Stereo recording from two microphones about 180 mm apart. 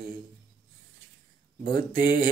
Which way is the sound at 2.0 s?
50° right (ahead or behind).